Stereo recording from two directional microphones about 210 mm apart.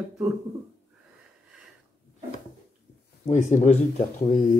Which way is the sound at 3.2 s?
35° left (ahead or behind).